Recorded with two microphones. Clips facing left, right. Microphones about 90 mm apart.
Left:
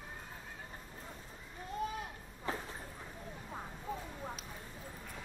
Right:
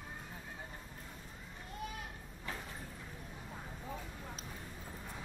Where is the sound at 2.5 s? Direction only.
30° left (ahead or behind).